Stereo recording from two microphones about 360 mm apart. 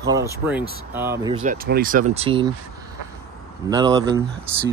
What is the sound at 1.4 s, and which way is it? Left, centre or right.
Speech, right.